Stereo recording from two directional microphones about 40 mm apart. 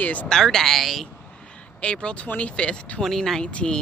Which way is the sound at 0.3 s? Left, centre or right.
Centre.